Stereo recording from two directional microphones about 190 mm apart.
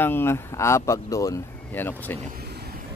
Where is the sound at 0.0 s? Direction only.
10° left (ahead or behind).